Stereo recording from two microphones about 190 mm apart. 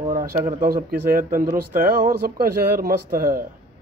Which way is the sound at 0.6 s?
50° right (ahead or behind).